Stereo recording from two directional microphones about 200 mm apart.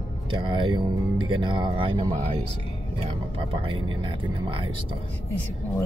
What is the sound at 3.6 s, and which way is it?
Speech, 25° right (ahead or behind).